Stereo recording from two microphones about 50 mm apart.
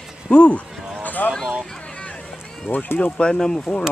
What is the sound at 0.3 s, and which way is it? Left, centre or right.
Speech, left.